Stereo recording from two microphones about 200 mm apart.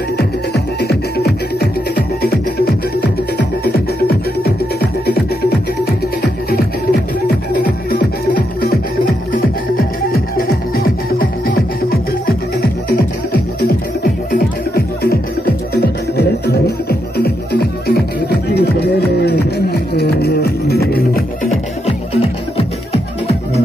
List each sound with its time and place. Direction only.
0.5 s music: 50° left (ahead or behind)
6.2 s music: 50° left (ahead or behind)
10.1 s music: 45° left (ahead or behind)
13.6 s music: 50° left (ahead or behind)
21.8 s music: 30° left (ahead or behind)